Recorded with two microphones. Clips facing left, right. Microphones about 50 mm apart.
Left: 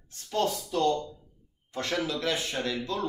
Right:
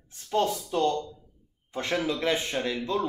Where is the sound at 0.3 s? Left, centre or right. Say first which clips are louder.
Right 2 dB; right.